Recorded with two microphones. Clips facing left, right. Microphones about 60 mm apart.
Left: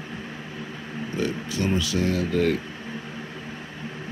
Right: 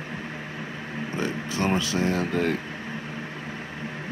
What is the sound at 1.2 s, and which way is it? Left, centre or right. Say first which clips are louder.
Speech: left 1 dB; right.